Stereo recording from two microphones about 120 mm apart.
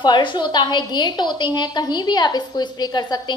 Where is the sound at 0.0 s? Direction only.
40° left (ahead or behind).